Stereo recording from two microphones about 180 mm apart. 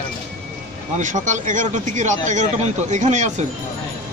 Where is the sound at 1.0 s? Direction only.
45° right (ahead or behind).